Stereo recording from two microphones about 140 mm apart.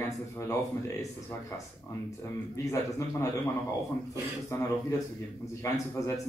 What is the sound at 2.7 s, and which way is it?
Speech, 20° left (ahead or behind).